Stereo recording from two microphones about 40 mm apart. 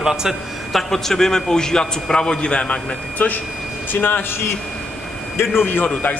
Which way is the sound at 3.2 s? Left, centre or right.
Left.